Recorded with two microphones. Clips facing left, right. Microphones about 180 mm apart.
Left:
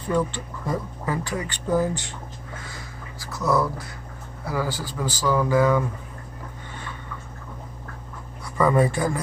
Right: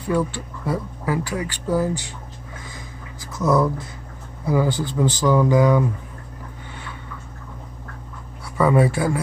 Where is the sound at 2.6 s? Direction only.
20° right (ahead or behind).